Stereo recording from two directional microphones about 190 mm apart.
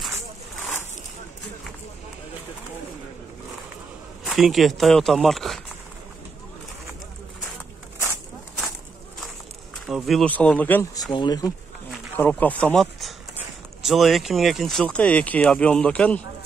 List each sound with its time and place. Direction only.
4.2 s speech: centre (ahead or behind)
9.8 s speech: centre (ahead or behind); by 11.5 s 20° left (ahead or behind)
12.2 s speech: 10° left (ahead or behind)
12.8 s speech: 5° right (ahead or behind)